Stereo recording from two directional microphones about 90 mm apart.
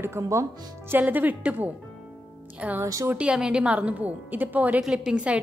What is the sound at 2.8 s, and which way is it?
Speech, 35° right (ahead or behind).